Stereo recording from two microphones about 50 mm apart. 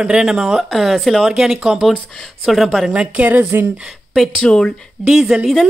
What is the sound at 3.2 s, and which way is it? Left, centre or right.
Speech, right.